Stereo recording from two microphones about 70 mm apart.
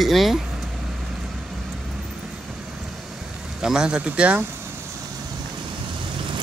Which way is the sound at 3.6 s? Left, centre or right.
Centre.